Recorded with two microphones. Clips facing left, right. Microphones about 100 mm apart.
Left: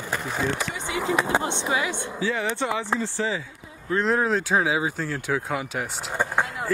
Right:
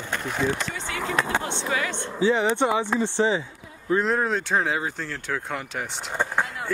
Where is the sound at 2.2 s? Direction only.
25° right (ahead or behind).